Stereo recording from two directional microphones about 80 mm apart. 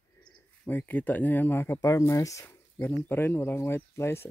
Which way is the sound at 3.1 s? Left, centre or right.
Left.